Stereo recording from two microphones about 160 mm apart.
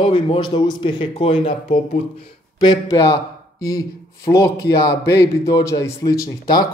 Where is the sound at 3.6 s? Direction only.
20° left (ahead or behind).